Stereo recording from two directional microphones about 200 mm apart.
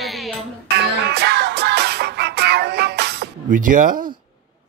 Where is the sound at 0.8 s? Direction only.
55° right (ahead or behind).